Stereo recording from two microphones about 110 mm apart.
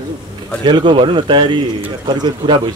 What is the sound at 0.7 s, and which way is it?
Speech, 45° right (ahead or behind).